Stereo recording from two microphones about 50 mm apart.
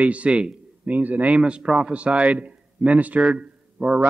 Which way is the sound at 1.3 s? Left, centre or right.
Right.